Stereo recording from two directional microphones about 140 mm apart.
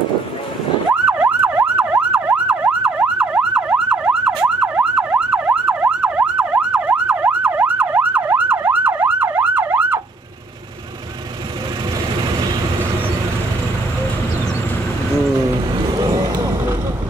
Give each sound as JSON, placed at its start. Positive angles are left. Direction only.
{"t": 0.9, "sound": "emergency vehicle", "side_deg": -10}
{"t": 15.9, "sound": "vehicle", "side_deg": -35}